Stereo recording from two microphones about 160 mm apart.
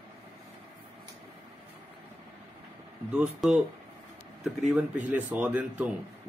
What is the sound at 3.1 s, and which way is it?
Speech, 5° right (ahead or behind).